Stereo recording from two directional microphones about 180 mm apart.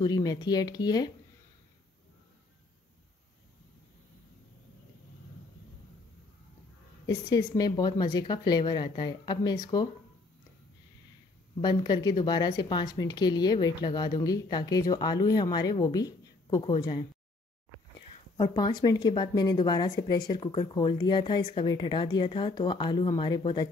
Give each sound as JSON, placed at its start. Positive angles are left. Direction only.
{"t": 0.0, "sound": "speech", "side_deg": 20}
{"t": 7.1, "sound": "speech", "side_deg": 20}
{"t": 11.6, "sound": "speech", "side_deg": 25}
{"t": 18.4, "sound": "speech", "side_deg": 25}